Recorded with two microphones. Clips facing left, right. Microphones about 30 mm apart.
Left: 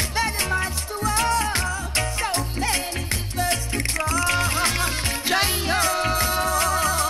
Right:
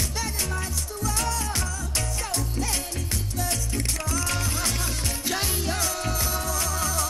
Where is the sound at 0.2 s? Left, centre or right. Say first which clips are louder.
Left 11 dB; left.